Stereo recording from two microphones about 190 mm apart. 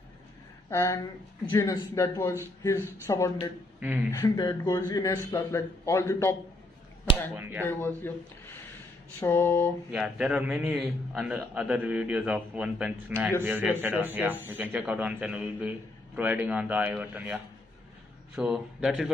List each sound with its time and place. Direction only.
0.7 s a man's voice: 15° left (ahead or behind)
7.3 s speech: 10° right (ahead or behind)
8.0 s a man's voice: 10° left (ahead or behind)
9.8 s a man's voice: 5° right (ahead or behind)